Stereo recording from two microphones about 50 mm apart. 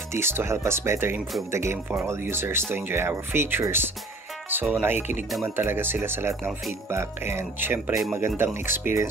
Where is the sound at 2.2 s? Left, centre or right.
Right.